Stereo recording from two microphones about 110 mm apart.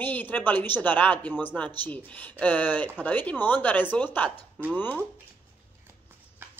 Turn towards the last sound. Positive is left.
turn(degrees=20)  # may be behind; listen again after turning